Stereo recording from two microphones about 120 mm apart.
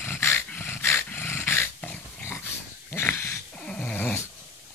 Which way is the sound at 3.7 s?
10° left (ahead or behind).